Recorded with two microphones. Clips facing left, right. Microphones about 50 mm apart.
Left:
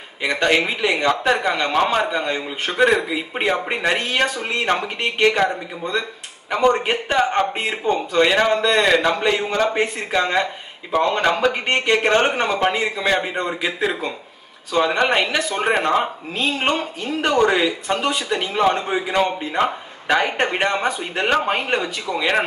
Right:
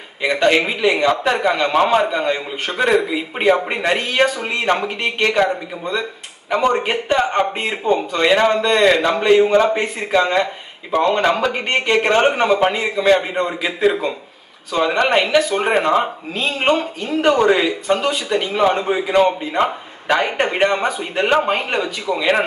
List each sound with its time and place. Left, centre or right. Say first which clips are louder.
0.2 s a man's voice: right 3 dB; centre